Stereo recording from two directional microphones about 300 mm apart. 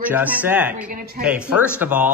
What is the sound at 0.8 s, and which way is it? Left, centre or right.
Speech, right.